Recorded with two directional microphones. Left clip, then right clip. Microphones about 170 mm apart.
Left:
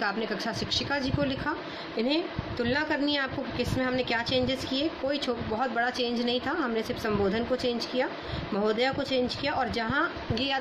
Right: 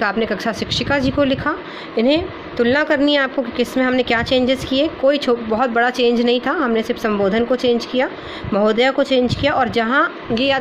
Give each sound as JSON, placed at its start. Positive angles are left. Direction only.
{"t": 0.0, "sound": "a woman's voice", "side_deg": -45}